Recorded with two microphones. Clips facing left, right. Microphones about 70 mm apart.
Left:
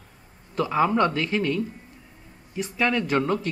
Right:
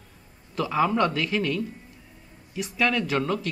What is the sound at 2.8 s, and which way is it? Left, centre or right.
Speech, centre.